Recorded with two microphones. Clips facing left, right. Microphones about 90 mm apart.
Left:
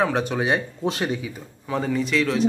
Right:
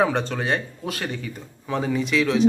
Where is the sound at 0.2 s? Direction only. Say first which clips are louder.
Left 2 dB; 15° left (ahead or behind).